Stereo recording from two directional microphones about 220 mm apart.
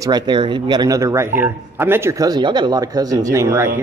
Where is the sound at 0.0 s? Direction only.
20° right (ahead or behind).